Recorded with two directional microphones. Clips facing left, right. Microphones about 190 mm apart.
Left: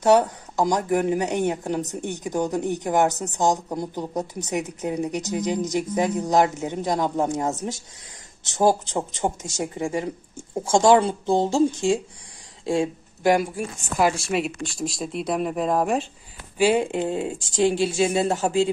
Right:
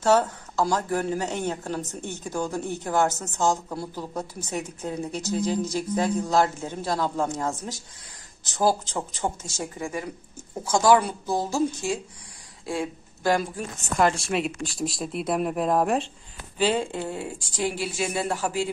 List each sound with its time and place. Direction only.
0.0 s speech: 15° left (ahead or behind)
13.2 s a woman's voice: 15° left (ahead or behind)
16.5 s speech: 10° left (ahead or behind)